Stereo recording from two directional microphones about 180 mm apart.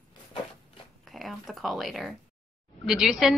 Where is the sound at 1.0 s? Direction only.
Centre (ahead or behind).